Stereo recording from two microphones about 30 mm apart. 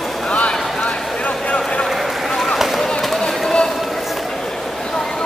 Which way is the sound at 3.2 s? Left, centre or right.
Left.